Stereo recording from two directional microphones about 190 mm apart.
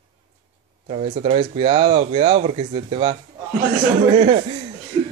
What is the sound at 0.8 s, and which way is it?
Speech, 30° right (ahead or behind).